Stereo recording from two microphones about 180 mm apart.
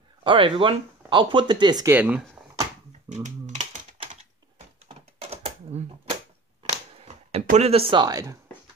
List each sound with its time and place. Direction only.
0.2 s speech: 30° right (ahead or behind)
2.0 s speech: 5° right (ahead or behind)
3.1 s typing: 40° right (ahead or behind)
6.7 s a sound: 35° right (ahead or behind)
7.4 s speech: 40° right (ahead or behind); by 8.4 s 20° right (ahead or behind)